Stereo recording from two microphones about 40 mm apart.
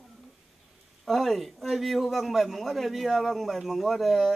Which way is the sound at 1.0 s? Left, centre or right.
Centre.